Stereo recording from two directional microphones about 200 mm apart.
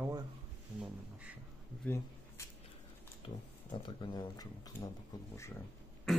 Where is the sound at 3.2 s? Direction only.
25° left (ahead or behind).